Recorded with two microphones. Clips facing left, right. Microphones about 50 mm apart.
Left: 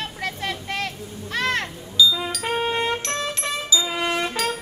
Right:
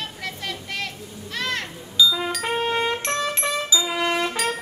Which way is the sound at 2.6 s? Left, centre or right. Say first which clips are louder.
Even; centre.